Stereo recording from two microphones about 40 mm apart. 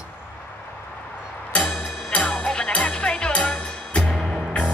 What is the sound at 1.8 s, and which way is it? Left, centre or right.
Music, left.